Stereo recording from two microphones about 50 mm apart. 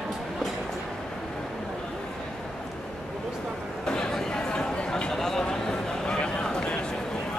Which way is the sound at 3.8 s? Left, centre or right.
Centre.